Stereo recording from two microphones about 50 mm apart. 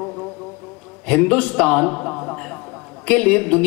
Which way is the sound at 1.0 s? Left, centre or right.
Left.